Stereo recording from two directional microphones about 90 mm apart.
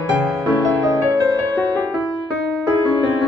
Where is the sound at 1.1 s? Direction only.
40° right (ahead or behind).